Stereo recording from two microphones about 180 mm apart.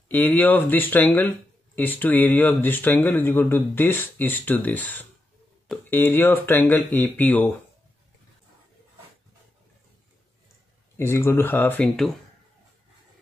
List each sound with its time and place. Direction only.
0.1 s speech: 10° left (ahead or behind)
11.0 s speech: 15° left (ahead or behind)